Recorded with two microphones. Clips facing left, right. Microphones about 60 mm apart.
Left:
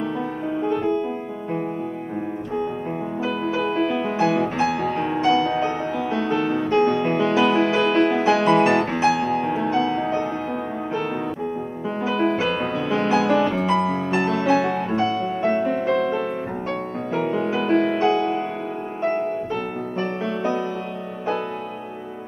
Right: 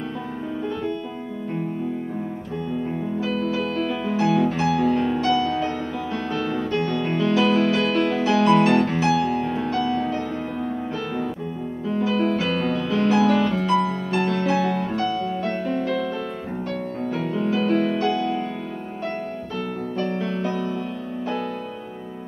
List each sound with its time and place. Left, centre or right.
3.2 s music: left
11.9 s music: left
20.0 s music: left